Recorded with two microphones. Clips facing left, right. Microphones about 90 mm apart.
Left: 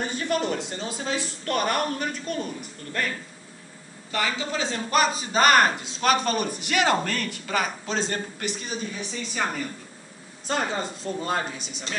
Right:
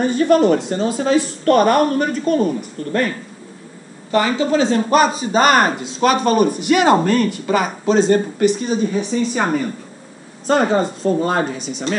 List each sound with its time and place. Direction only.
0.0 s speech: 50° right (ahead or behind)
4.9 s a man's voice: 25° right (ahead or behind); by 9.7 s 45° right (ahead or behind)
10.4 s speech: 55° right (ahead or behind)